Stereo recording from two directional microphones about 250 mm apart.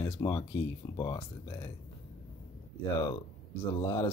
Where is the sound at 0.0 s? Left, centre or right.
Centre.